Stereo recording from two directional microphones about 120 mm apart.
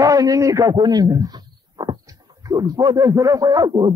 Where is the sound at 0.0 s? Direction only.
30° right (ahead or behind).